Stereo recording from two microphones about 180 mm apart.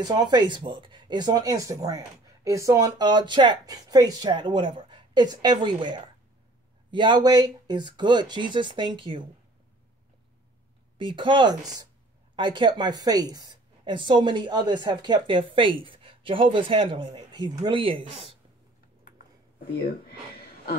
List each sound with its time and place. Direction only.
0.0 s speech: 25° right (ahead or behind)
11.0 s speech: 25° right (ahead or behind)